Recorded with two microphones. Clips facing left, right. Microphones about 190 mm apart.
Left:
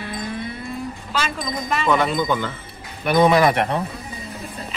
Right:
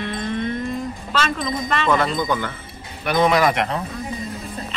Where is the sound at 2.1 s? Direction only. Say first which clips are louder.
Left 1 dB; 20° left (ahead or behind).